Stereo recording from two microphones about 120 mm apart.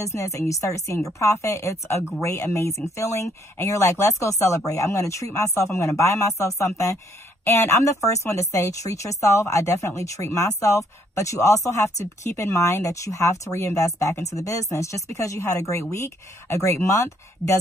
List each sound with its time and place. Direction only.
0.0 s speech: 25° left (ahead or behind)